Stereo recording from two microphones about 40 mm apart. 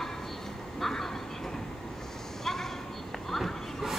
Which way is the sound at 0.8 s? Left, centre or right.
Centre.